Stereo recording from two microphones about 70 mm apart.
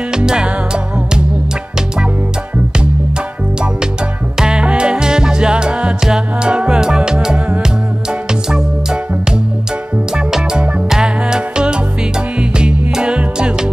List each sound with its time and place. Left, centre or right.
0.1 s music: centre
4.4 s music: centre
10.1 s music: centre